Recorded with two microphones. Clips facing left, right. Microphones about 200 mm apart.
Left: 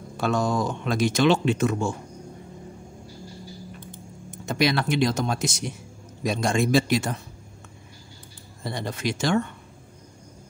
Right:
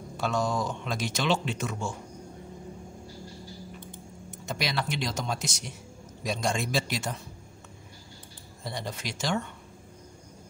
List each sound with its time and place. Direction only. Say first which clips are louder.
0.2 s speech: left 5 dB; 55° left (ahead or behind)
4.5 s speech: left 9 dB; 60° left (ahead or behind)
8.6 s speech: left 7 dB; 60° left (ahead or behind)